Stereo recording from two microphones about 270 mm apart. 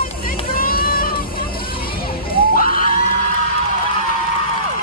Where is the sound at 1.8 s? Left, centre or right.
Left.